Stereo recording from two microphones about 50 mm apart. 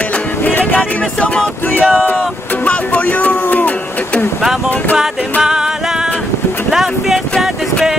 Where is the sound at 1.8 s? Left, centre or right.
Centre.